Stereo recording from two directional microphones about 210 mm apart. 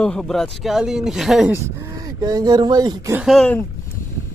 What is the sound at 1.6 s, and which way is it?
Speech, 15° right (ahead or behind).